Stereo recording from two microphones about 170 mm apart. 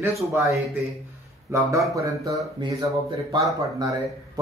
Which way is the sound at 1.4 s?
15° right (ahead or behind).